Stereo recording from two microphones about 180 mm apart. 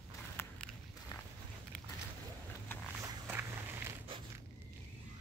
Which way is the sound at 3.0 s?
10° right (ahead or behind).